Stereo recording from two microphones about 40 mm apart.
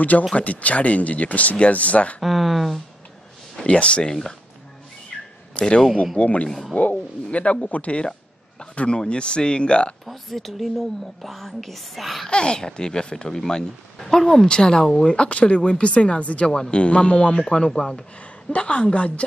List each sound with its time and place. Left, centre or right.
0.4 s speech: left
2.2 s a woman's voice: centre
3.6 s speech: left
4.1 s speech: centre
5.6 s speech: left
8.7 s speech: left
10.0 s a woman's voice: centre
12.3 s speech: left
15.1 s speech: left
16.4 s speech: left
18.5 s speech: left